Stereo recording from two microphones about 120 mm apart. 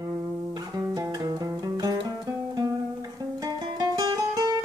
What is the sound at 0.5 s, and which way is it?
Music, 30° right (ahead or behind).